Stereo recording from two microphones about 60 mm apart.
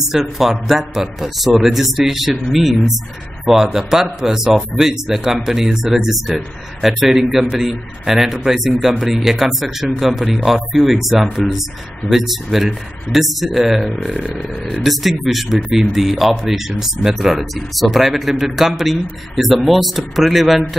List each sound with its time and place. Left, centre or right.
0.1 s speech: centre